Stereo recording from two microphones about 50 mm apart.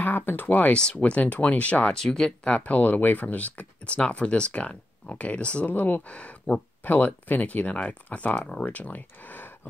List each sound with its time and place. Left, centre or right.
0.0 s speech: left
0.7 s speech: centre
2.0 s speech: centre
2.6 s speech: left
5.7 s speech: left
6.0 s speech: left
6.8 s speech: left